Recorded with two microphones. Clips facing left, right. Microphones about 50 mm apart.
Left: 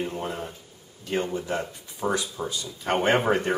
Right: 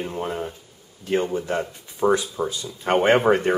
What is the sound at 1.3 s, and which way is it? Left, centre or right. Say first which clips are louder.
Speech: right 4 dB; right.